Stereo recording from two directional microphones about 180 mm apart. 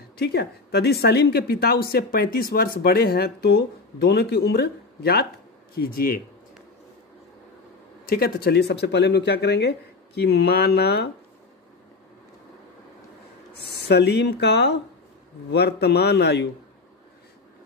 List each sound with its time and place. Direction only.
0.2 s a woman's voice: 65° left (ahead or behind)
8.1 s speech: 60° left (ahead or behind)
13.7 s speech: 70° left (ahead or behind)